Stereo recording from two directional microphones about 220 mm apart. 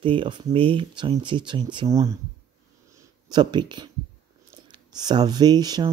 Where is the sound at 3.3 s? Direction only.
20° right (ahead or behind).